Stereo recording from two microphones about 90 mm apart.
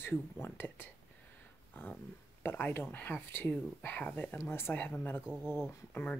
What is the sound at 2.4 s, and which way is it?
Speech, 25° left (ahead or behind).